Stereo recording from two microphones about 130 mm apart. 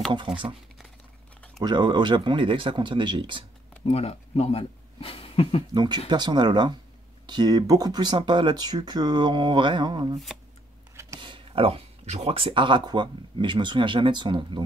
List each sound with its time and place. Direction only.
1.6 s speech: 35° right (ahead or behind)
3.8 s speech: 50° left (ahead or behind)
5.8 s speech: 35° right (ahead or behind)
10.1 s speech: centre (ahead or behind)
11.1 s speech: 40° right (ahead or behind)